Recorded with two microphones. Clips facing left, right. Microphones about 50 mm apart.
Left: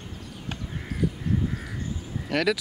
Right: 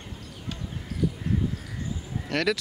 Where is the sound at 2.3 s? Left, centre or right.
Centre.